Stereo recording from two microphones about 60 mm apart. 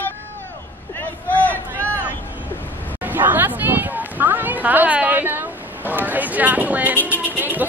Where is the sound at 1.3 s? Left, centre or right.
Left.